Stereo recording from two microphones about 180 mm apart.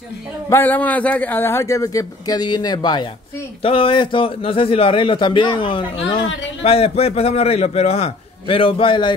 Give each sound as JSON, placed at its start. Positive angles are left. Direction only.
{"t": 0.5, "sound": "a man's voice", "side_deg": 10}